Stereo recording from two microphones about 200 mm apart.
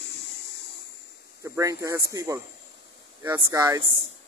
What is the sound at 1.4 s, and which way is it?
Speech, 15° right (ahead or behind).